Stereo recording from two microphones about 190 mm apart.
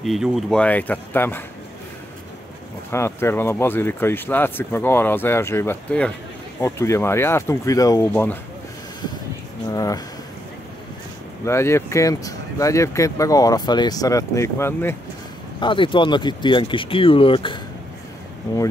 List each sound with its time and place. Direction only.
0.0 s speech: centre (ahead or behind)
2.9 s speech: 15° left (ahead or behind)
9.7 s a sound: 20° left (ahead or behind)
11.4 s speech: 15° left (ahead or behind)
15.6 s speech: 25° left (ahead or behind)